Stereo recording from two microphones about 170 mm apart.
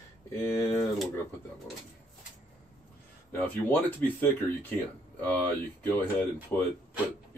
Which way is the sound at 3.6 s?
10° left (ahead or behind).